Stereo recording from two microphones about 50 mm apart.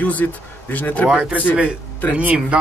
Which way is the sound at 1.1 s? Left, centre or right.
Right.